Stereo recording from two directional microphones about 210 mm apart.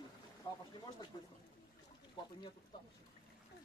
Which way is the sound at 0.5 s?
20° left (ahead or behind).